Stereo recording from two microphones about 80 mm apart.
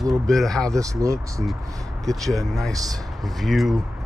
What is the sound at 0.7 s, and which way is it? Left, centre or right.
Speech, right.